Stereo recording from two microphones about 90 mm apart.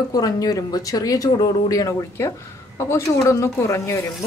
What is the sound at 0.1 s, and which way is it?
A woman's voice, 45° left (ahead or behind).